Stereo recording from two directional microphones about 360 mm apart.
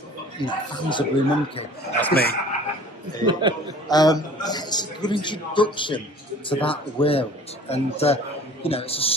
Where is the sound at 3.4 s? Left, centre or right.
Centre.